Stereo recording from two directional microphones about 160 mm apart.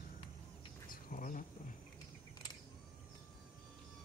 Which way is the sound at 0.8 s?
60° left (ahead or behind).